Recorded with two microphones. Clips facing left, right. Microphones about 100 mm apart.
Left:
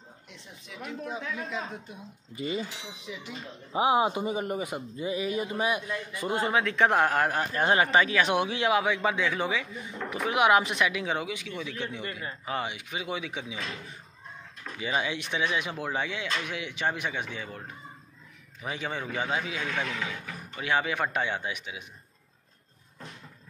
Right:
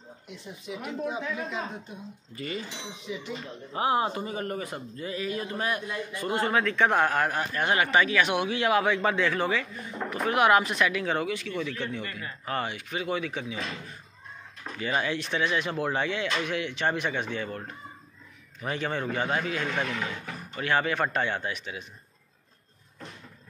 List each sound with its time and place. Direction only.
0.7 s speech: 5° right (ahead or behind)
2.3 s speech: 20° left (ahead or behind)
2.7 s speech: 5° left (ahead or behind); by 8.8 s 20° left (ahead or behind)
8.8 s speech: 5° left (ahead or behind)
14.8 s speech: 15° left (ahead or behind)
19.7 s speech: 5° right (ahead or behind)
20.3 s speech: 10° left (ahead or behind)